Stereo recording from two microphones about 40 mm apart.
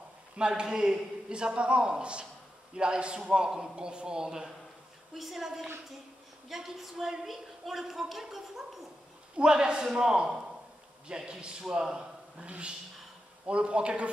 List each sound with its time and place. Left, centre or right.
0.4 s a man's voice: centre
5.1 s a woman's voice: centre
9.4 s a man's voice: right
12.4 s a man's voice: right